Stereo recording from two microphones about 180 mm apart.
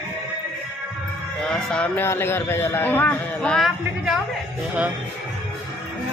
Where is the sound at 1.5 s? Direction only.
5° left (ahead or behind).